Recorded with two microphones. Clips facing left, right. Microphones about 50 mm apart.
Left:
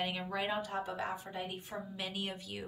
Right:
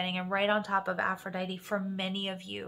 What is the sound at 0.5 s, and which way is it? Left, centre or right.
A woman's voice, right.